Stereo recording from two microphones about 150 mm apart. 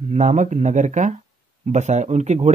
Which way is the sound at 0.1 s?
50° right (ahead or behind).